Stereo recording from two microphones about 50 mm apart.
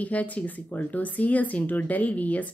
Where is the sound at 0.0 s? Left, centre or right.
Left.